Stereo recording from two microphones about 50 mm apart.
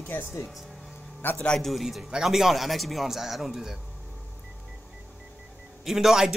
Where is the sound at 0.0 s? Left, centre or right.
Left.